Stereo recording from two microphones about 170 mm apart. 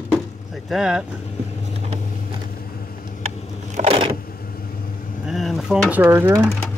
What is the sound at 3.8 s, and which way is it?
Vehicle, 35° right (ahead or behind).